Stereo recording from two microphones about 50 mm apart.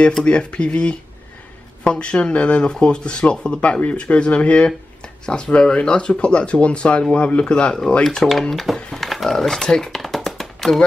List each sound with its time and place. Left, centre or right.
0.2 s speech: left
8.0 s speech: centre
8.7 s a sound: centre